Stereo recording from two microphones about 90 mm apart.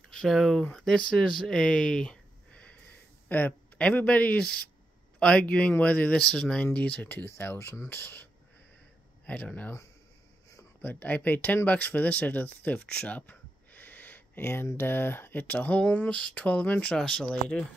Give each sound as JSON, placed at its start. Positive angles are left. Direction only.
{"t": 0.1, "sound": "speech", "side_deg": 0}
{"t": 10.8, "sound": "speech", "side_deg": 20}